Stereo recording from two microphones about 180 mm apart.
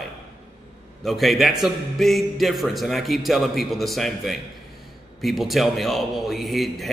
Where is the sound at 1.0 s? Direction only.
Centre (ahead or behind).